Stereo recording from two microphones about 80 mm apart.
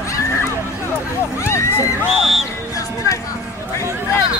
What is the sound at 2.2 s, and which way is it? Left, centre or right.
Music, centre.